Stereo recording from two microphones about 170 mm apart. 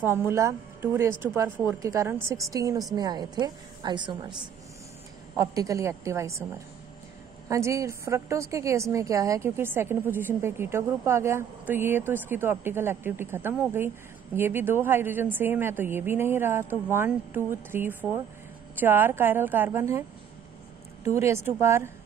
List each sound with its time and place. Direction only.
0.0 s a woman's voice: 15° right (ahead or behind)
7.4 s a woman's voice: 20° right (ahead or behind)